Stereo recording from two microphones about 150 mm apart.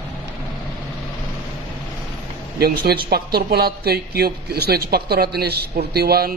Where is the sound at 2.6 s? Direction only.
90° right.